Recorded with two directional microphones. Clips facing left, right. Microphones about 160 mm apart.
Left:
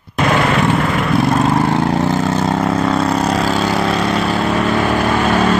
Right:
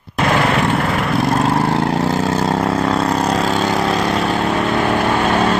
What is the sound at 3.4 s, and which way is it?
Vehicle, centre (ahead or behind).